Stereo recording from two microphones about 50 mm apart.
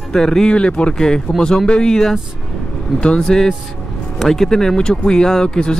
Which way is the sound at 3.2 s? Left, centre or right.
Centre.